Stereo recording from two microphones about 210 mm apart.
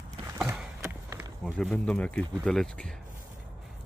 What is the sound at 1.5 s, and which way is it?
Speech, centre (ahead or behind).